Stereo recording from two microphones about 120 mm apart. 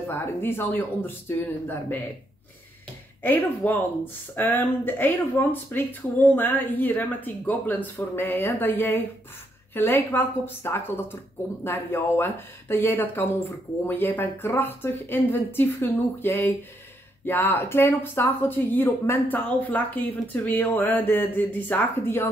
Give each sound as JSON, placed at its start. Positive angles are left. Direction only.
{"t": 0.1, "sound": "speech", "side_deg": 20}
{"t": 3.2, "sound": "speech", "side_deg": 15}